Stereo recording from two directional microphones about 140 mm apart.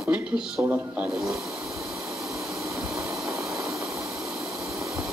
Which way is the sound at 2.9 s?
5° right (ahead or behind).